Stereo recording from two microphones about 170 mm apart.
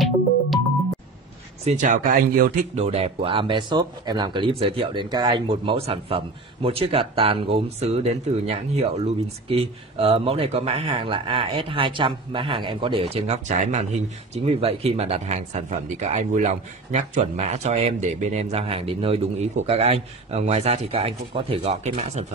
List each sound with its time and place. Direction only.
1.6 s speech: 45° right (ahead or behind)
2.7 s speech: 35° right (ahead or behind)